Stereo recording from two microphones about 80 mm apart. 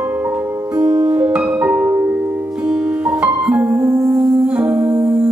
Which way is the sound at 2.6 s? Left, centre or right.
Centre.